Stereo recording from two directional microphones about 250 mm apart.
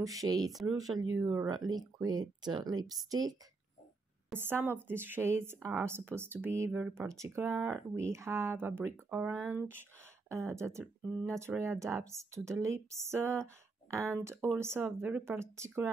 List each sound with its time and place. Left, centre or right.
0.0 s speech: centre
0.9 s speech: right
1.2 s speech: centre